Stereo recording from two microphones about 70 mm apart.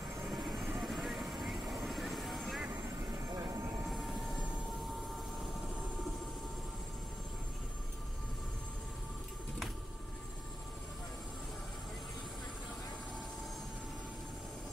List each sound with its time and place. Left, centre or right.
0.3 s vehicle: centre
3.3 s vehicle: right
3.8 s train: centre